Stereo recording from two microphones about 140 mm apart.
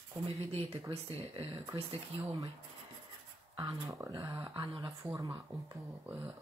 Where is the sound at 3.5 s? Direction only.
25° right (ahead or behind).